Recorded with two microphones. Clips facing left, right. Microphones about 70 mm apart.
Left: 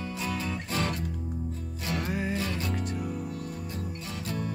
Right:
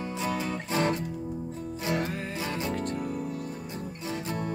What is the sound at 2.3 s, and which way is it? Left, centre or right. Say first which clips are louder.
Music: even; centre.